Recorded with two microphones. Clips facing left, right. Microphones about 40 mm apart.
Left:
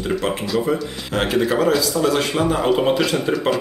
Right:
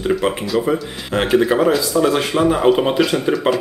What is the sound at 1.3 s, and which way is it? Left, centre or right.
Speech, centre.